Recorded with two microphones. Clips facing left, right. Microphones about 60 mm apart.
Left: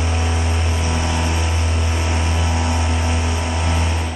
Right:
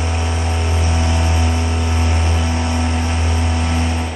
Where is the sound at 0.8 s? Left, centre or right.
Centre.